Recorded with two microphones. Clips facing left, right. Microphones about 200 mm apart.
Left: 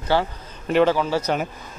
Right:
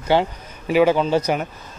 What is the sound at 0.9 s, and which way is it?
Speech, 20° right (ahead or behind).